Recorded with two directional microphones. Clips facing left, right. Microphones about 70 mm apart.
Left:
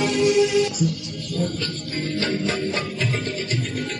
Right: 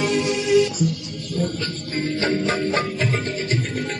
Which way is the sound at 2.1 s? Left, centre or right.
Right.